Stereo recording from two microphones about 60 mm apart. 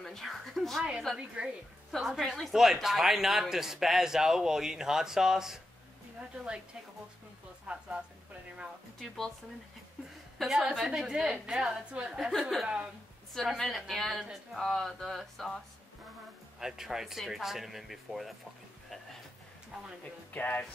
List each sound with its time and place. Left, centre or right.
0.0 s speech: centre
9.0 s speech: centre
10.6 s speech: centre
11.9 s speech: centre
12.3 s speech: centre
16.5 s speech: centre
19.7 s speech: centre
20.3 s music: left